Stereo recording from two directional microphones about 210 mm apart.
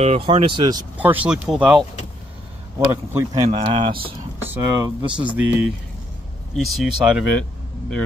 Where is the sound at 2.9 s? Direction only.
10° right (ahead or behind).